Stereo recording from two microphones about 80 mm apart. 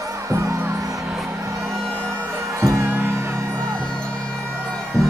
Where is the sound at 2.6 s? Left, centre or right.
Right.